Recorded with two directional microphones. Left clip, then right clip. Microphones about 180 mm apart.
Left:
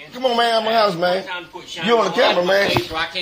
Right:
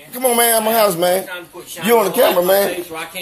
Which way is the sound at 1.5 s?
20° right (ahead or behind).